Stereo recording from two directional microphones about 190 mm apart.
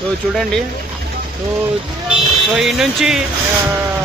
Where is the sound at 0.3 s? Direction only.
Centre (ahead or behind).